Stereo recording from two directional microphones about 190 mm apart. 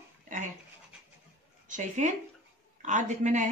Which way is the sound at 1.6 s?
40° right (ahead or behind).